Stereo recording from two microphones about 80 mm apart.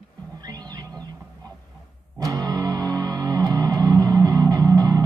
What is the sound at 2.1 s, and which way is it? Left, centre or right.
Music, right.